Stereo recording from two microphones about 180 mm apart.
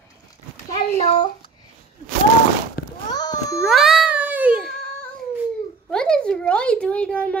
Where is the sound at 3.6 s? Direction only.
Centre (ahead or behind).